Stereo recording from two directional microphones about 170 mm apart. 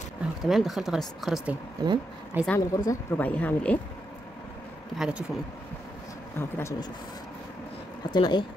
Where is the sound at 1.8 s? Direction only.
25° right (ahead or behind).